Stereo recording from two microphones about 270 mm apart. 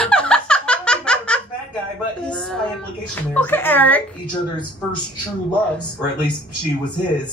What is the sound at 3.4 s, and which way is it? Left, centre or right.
Speech, centre.